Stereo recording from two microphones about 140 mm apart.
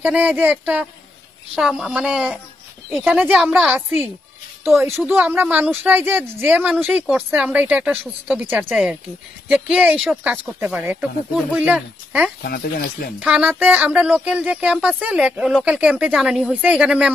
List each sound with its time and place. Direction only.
0.0 s speech: 10° right (ahead or behind)
12.4 s speech: 90° left
13.3 s speech: 10° right (ahead or behind)